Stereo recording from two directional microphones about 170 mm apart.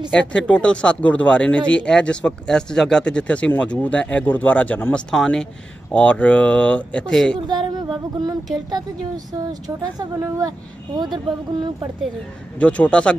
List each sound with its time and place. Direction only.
0.3 s speech: 5° left (ahead or behind)
7.4 s a woman's voice: 25° right (ahead or behind)
12.5 s speech: 10° left (ahead or behind)